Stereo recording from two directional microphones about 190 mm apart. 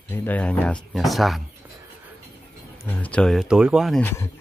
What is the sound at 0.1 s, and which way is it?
Speech, 10° left (ahead or behind).